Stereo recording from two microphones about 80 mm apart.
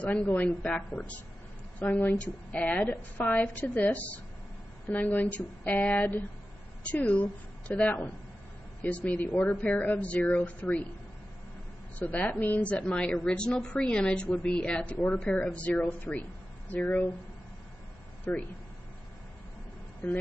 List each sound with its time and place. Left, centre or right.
0.0 s speech: centre
1.8 s a woman's voice: left
12.0 s a woman's voice: centre
18.3 s a woman's voice: centre